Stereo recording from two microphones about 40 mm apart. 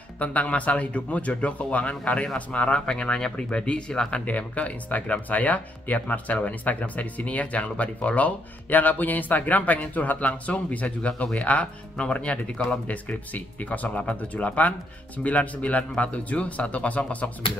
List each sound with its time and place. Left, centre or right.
0.2 s speech: left
2.9 s speech: left
4.3 s speech: left
8.6 s speech: left